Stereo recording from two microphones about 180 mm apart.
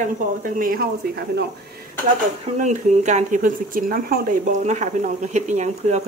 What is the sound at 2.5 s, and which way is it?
Speech, 40° right (ahead or behind).